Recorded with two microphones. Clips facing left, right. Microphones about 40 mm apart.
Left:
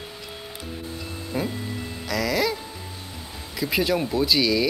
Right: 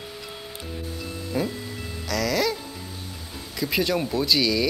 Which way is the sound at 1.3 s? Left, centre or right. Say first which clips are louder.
Even; centre.